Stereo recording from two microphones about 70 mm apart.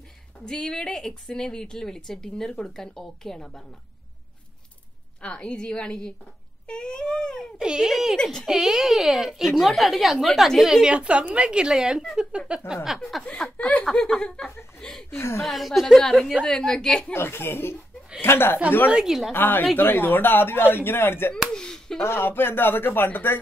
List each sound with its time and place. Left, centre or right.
0.5 s a woman's voice: centre
5.2 s a woman's voice: centre
7.5 s speech: centre
8.2 s a woman's voice: centre
8.5 s speech: centre
13.0 s a woman's voice: centre
15.0 s speech: left
15.4 s a woman's voice: centre
17.1 s speech: left
18.9 s speech: centre
19.3 s speech: left
21.5 s speech: centre
22.0 s speech: left